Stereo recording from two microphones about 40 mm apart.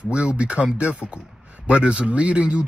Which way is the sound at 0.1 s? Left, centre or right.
Right.